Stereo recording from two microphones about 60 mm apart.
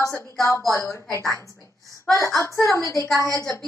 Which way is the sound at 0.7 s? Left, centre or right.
Left.